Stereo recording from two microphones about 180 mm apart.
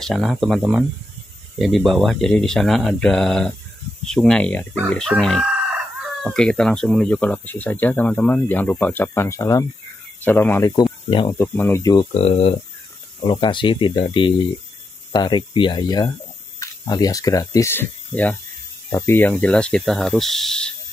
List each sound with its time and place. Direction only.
0.0 s speech: centre (ahead or behind)
10.8 s speech: 25° left (ahead or behind)
11.3 s speech: 10° left (ahead or behind)
12.1 s speech: 35° left (ahead or behind); by 20.7 s 5° left (ahead or behind)